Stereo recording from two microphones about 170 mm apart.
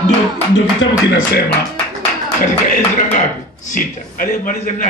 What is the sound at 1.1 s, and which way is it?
Speech, 75° left (ahead or behind).